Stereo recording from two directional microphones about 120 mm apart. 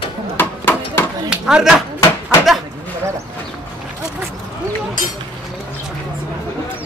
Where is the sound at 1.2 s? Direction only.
5° right (ahead or behind).